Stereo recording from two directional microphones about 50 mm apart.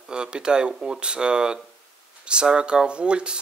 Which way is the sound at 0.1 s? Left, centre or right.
Centre.